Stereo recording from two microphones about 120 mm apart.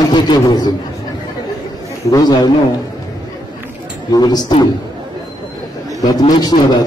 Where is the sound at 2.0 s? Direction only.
35° left (ahead or behind).